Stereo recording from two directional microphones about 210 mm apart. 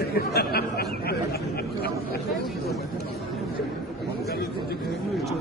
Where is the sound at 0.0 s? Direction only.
50° left (ahead or behind).